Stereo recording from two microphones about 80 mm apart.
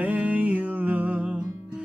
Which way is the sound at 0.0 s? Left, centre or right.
Centre.